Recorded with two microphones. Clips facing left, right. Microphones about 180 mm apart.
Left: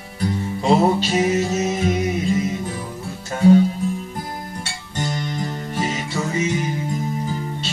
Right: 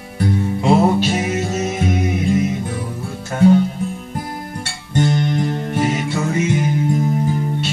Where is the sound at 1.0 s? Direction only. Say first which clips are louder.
Even; 55° right (ahead or behind).